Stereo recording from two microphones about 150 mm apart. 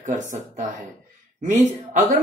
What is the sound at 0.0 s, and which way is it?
Speech, 55° right (ahead or behind).